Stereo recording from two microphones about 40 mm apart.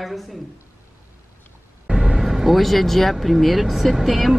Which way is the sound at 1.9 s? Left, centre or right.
Right.